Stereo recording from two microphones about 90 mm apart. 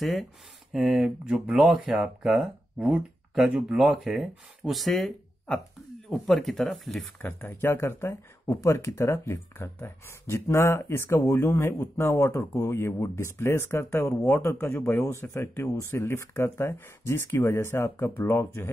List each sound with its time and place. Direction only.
0.0 s speech: centre (ahead or behind)
7.2 s speech: 25° left (ahead or behind)